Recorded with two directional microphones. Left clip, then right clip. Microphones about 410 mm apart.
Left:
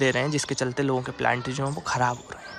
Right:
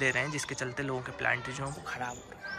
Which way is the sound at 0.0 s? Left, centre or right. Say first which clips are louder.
Left 6 dB; centre.